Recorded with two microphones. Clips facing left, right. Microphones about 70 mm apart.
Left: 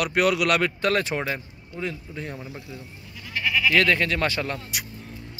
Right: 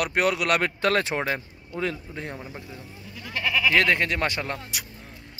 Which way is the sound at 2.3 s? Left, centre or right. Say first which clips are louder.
Even; right.